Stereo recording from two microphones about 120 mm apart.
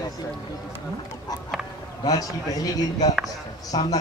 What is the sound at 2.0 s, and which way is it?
A man's voice, 30° left (ahead or behind).